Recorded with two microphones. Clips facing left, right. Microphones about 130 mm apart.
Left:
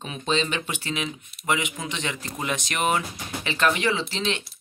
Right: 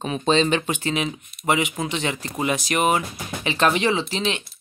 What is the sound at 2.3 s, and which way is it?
Speech, 10° right (ahead or behind).